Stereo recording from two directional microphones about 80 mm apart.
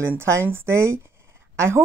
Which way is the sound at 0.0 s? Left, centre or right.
Right.